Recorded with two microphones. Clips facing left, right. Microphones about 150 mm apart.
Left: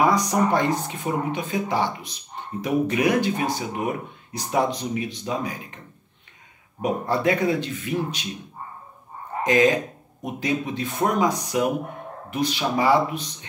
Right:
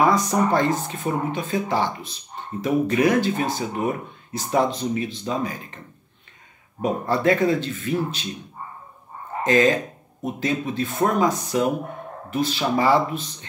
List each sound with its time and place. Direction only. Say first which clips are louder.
0.0 s speech: right 1 dB; 15° left (ahead or behind)
6.8 s speech: right 1 dB; 15° left (ahead or behind)
9.4 s speech: right 1 dB; 15° left (ahead or behind)